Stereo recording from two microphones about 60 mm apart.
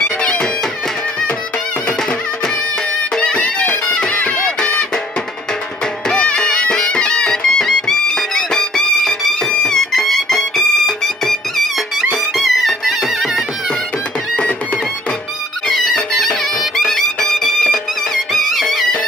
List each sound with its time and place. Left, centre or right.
0.0 s music: centre
3.2 s music: centre
6.0 s music: centre
15.6 s music: centre